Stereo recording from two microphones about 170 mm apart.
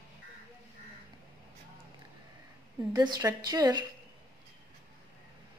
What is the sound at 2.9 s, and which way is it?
Speech, 20° right (ahead or behind).